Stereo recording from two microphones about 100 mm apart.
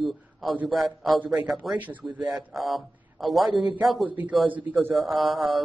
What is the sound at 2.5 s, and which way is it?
A man's voice, centre (ahead or behind).